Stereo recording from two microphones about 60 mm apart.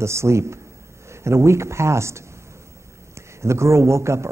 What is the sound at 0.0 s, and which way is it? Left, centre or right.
A man's voice, right.